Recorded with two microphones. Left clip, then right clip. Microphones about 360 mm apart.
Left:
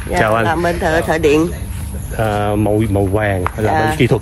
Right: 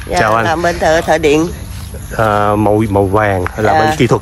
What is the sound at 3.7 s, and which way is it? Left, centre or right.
Speech, right.